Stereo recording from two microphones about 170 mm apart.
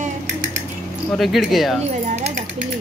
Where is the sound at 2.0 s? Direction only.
40° right (ahead or behind).